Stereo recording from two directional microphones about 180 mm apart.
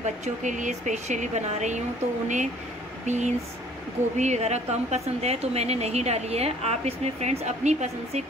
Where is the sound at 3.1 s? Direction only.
40° right (ahead or behind).